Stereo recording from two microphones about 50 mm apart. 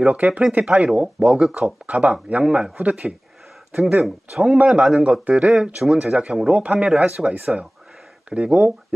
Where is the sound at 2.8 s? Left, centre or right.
Right.